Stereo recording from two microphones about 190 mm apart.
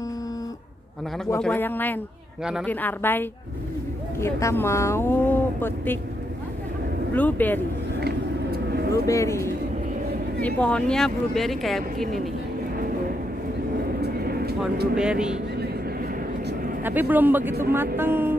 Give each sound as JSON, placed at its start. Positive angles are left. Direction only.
{"t": 1.4, "sound": "speech", "side_deg": 10}
{"t": 7.2, "sound": "speech", "side_deg": 10}
{"t": 8.0, "sound": "vehicle", "side_deg": -55}
{"t": 8.9, "sound": "speech", "side_deg": 15}
{"t": 14.0, "sound": "vehicle", "side_deg": -55}
{"t": 15.0, "sound": "speech", "side_deg": -5}
{"t": 16.8, "sound": "speech", "side_deg": -10}